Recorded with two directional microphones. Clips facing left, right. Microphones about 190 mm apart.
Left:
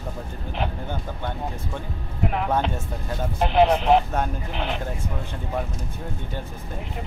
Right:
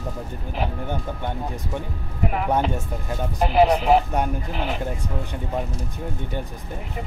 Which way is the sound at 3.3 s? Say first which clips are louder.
Right 1 dB; 5° right (ahead or behind).